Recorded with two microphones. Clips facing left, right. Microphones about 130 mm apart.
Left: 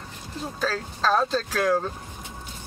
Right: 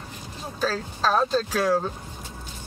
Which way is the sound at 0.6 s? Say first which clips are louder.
Right 2 dB; 5° right (ahead or behind).